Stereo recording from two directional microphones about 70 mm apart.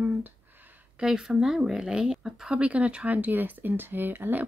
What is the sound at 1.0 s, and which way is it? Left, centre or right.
A woman's voice, centre.